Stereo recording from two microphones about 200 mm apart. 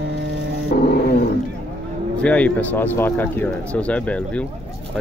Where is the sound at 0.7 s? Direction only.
50° left (ahead or behind).